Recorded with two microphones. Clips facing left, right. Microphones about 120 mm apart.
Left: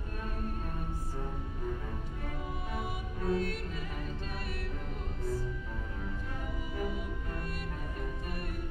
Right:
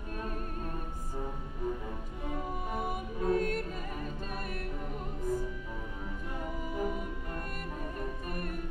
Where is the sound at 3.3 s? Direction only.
45° right (ahead or behind).